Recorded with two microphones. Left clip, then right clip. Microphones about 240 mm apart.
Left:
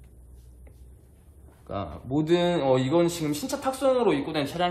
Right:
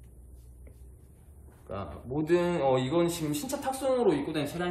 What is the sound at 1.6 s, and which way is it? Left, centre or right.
A man's voice, left.